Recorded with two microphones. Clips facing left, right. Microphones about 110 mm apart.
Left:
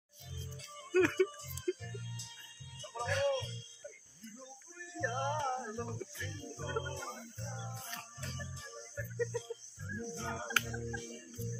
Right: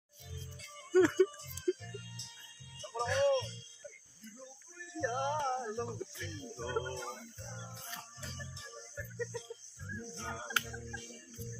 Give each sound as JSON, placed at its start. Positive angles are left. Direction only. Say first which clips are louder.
{"t": 0.9, "sound": "music", "louder": "right 3 dB", "side_deg": -10}
{"t": 2.8, "sound": "music", "louder": "right 4 dB", "side_deg": -20}
{"t": 3.1, "sound": "music", "louder": "right 3 dB", "side_deg": 0}
{"t": 5.0, "sound": "music", "louder": "right 1 dB", "side_deg": -10}
{"t": 6.3, "sound": "music", "louder": "right 2 dB", "side_deg": -5}
{"t": 9.9, "sound": "music", "louder": "left 3 dB", "side_deg": 10}